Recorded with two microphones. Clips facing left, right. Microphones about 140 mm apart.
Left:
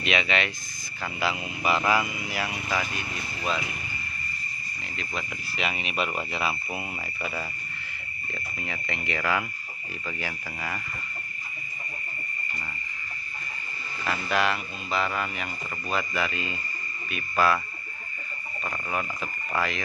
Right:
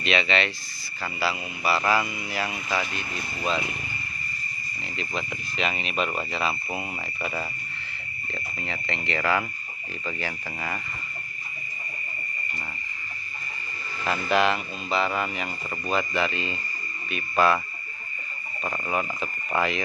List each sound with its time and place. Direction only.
0.0 s speech: 10° left (ahead or behind)
4.9 s speech: 5° left (ahead or behind)
7.2 s speech: 5° right (ahead or behind)
8.5 s speech: 10° left (ahead or behind)
14.0 s speech: centre (ahead or behind)
18.6 s frog: 10° right (ahead or behind)
19.5 s speech: centre (ahead or behind)